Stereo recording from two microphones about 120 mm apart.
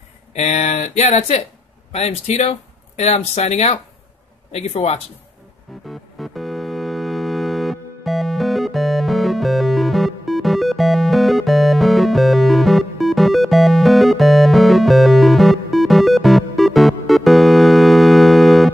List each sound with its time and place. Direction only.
0.3 s speech: 70° left (ahead or behind)
5.9 s music: centre (ahead or behind)